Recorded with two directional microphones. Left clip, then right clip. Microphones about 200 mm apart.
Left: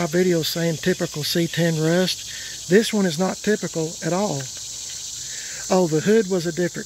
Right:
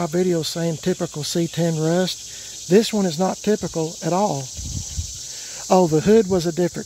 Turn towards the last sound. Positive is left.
turn(degrees=-20)  # may be behind; listen again after turning